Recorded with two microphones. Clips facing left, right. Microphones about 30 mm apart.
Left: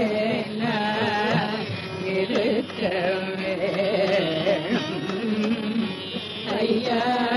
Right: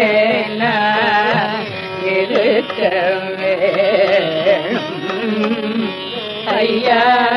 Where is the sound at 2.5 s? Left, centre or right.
Right.